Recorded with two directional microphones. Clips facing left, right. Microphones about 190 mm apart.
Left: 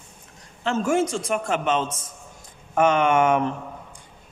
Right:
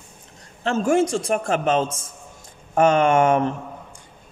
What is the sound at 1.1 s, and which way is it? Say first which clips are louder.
A woman's voice: right 3 dB; 35° right (ahead or behind).